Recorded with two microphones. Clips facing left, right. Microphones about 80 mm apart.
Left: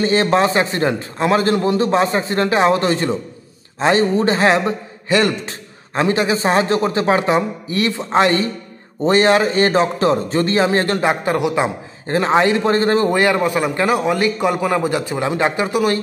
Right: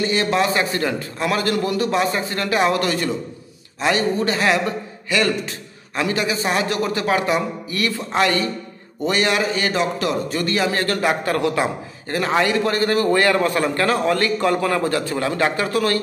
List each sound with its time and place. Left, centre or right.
0.0 s a man's voice: left; by 16.0 s centre